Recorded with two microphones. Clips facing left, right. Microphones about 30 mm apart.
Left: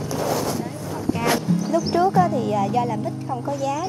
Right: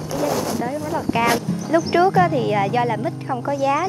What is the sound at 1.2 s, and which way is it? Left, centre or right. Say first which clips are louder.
Speech: left 2 dB; right.